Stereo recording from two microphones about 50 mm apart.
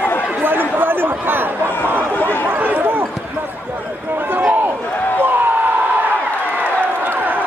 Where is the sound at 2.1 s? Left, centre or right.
Left.